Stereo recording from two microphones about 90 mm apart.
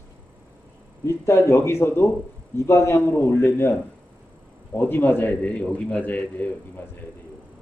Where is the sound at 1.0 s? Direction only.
30° left (ahead or behind).